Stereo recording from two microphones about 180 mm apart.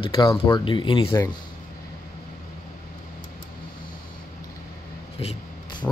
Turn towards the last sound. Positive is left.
turn(degrees=35)  # may be behind; listen again after turning